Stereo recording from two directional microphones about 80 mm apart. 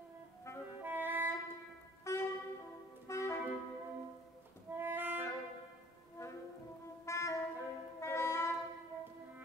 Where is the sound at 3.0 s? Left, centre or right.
Left.